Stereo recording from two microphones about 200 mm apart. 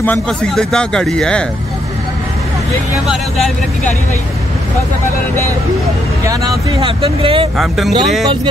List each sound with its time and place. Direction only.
0.0 s speech: 5° left (ahead or behind)
3.1 s speech: centre (ahead or behind)
6.8 s speech: 25° right (ahead or behind)
7.5 s speech: centre (ahead or behind)